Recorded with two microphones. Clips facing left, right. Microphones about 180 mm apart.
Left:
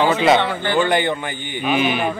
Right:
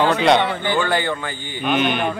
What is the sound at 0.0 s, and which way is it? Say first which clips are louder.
Speech: even; 5° left (ahead or behind).